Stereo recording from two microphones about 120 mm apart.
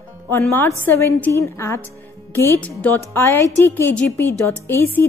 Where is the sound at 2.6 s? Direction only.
10° left (ahead or behind).